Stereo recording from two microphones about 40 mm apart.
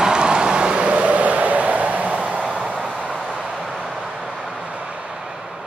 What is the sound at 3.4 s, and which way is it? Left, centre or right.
Vehicle, centre.